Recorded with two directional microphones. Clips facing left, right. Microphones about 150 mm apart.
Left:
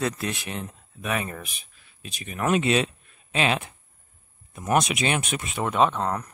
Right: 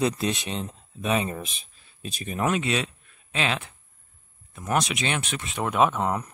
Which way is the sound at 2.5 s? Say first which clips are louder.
Left 4 dB; 20° left (ahead or behind).